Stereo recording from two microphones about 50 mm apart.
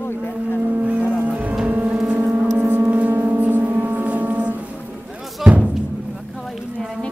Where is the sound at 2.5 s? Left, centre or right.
Right.